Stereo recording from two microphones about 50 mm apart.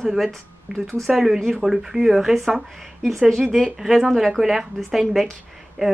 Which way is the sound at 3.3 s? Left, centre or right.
Centre.